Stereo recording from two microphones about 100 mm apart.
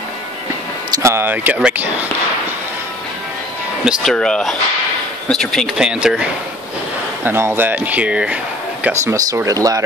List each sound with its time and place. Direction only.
1.0 s speech: 20° right (ahead or behind)
4.0 s speech: 5° left (ahead or behind)
5.8 s speech: 10° right (ahead or behind)
7.2 s speech: 20° right (ahead or behind)
9.0 s speech: 35° right (ahead or behind)